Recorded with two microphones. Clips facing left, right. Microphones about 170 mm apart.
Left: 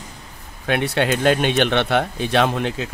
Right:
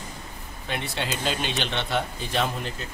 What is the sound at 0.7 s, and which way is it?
Speech, 65° left (ahead or behind).